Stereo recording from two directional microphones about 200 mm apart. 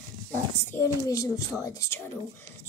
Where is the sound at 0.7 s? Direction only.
15° left (ahead or behind).